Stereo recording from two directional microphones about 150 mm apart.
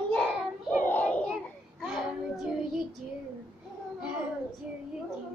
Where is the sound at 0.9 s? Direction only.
10° left (ahead or behind).